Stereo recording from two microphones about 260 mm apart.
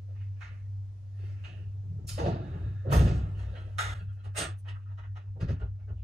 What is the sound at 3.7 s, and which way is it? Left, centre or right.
Music, right.